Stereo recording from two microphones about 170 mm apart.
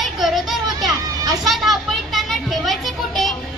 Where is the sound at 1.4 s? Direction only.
Centre (ahead or behind).